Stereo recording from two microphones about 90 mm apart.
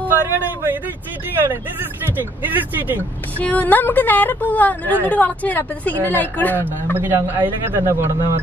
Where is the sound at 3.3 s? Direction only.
15° left (ahead or behind).